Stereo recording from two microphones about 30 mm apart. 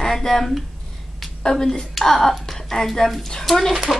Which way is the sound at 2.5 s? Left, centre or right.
Centre.